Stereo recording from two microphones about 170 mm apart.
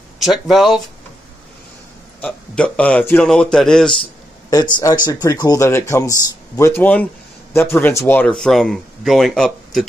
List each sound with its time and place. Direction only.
0.2 s speech: centre (ahead or behind)
2.2 s speech: 5° left (ahead or behind)
4.5 s speech: 20° left (ahead or behind); by 9.8 s centre (ahead or behind)